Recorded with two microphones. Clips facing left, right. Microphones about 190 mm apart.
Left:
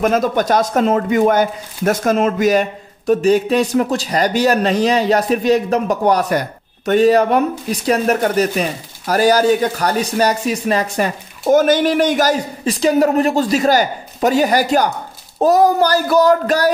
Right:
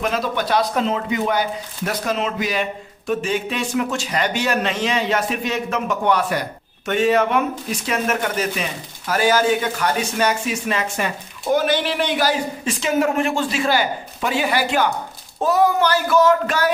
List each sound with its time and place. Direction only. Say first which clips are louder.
0.0 s speech: left 7 dB; 45° left (ahead or behind)